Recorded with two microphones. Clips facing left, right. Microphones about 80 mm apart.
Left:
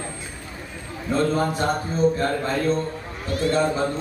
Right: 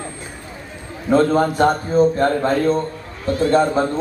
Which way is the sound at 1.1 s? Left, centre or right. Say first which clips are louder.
Right 7 dB; right.